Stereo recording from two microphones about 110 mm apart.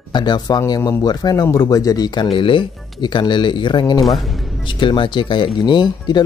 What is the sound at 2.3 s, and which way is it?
Speech, 50° left (ahead or behind).